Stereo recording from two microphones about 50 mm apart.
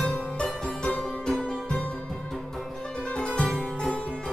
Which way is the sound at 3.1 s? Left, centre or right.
Centre.